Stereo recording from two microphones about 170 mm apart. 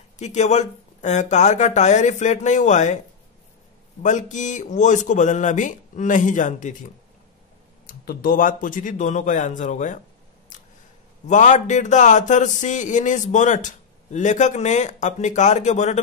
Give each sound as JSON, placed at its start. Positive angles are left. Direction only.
{"t": 0.2, "sound": "speech", "side_deg": 45}
{"t": 4.0, "sound": "speech", "side_deg": 45}
{"t": 7.8, "sound": "speech", "side_deg": 60}
{"t": 10.5, "sound": "a sound", "side_deg": 50}
{"t": 11.2, "sound": "speech", "side_deg": 45}